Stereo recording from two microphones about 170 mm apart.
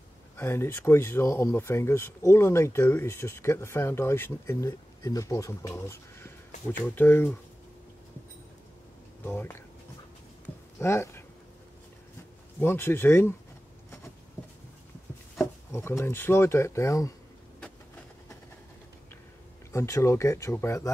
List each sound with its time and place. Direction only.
0.4 s speech: 15° left (ahead or behind)
9.2 s speech: 15° left (ahead or behind)
10.8 s speech: 15° left (ahead or behind)
12.5 s speech: 15° left (ahead or behind)
15.7 s speech: 15° left (ahead or behind)
19.7 s speech: 15° left (ahead or behind)